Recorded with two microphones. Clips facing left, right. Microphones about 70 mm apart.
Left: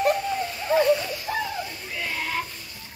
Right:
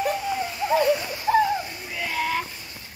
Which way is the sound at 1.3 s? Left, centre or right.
Right.